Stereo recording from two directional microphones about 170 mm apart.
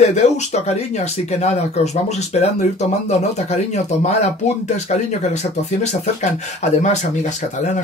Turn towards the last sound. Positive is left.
turn(degrees=40)  # may be behind; listen again after turning